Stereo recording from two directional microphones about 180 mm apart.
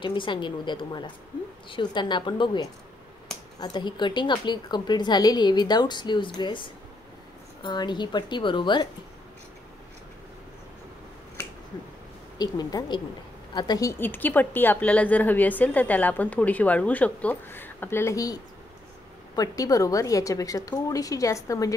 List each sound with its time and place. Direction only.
0.0 s a woman's voice: 25° left (ahead or behind)
12.4 s a woman's voice: 20° left (ahead or behind)